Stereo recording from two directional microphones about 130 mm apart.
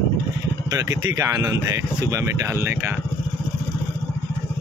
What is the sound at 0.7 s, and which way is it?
Speech, 25° right (ahead or behind).